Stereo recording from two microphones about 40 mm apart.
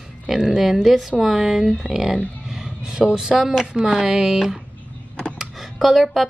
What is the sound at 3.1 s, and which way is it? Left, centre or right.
Speech, centre.